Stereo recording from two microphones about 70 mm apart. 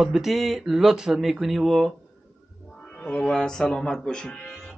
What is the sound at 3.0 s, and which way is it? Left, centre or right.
Speech, centre.